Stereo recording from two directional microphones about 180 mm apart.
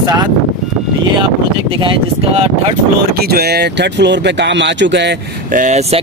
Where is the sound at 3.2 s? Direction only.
60° right (ahead or behind); by 5.1 s 75° right (ahead or behind).